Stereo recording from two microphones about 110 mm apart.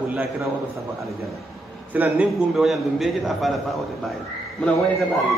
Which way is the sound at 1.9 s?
15° right (ahead or behind).